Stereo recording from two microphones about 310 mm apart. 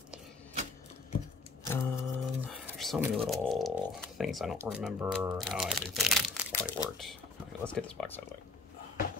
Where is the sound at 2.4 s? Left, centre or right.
Centre.